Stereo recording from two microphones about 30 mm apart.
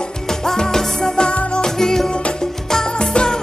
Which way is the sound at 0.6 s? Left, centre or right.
Left.